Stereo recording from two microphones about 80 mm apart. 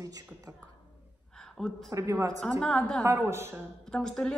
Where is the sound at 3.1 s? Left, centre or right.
Right.